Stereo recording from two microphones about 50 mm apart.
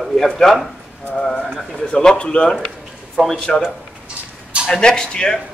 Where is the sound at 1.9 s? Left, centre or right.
Centre.